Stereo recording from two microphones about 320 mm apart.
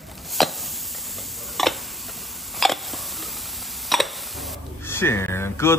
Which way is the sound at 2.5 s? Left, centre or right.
Centre.